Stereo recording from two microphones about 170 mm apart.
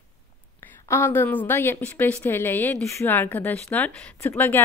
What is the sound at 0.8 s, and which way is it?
Speech, 15° left (ahead or behind).